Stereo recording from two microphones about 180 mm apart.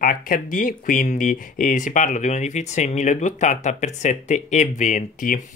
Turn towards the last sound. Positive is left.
turn(degrees=45)  # may be behind; listen again after turning